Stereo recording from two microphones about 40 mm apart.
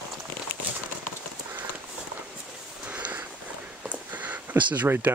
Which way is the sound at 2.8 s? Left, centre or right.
Right.